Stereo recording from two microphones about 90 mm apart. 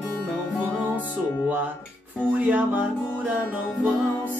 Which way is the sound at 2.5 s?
15° right (ahead or behind).